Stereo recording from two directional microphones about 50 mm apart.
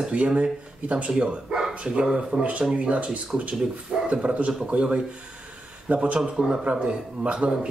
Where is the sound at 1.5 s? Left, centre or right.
Centre.